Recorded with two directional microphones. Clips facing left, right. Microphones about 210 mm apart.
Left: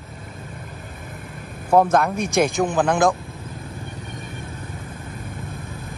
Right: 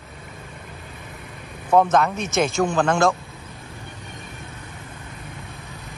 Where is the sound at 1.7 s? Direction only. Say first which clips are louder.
Left 1 dB; 10° left (ahead or behind).